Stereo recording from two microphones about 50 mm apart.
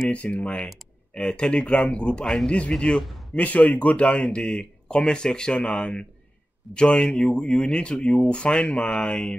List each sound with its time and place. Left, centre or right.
0.1 s a man's voice: left
3.3 s speech: left